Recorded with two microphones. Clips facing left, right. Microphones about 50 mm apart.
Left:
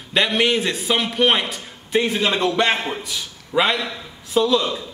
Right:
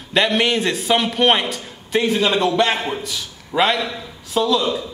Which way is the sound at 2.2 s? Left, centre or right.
Centre.